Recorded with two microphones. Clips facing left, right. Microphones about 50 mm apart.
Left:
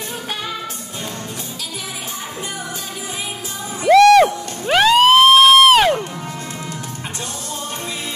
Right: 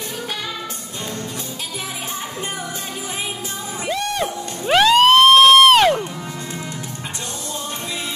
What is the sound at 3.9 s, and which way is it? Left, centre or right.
Music, left.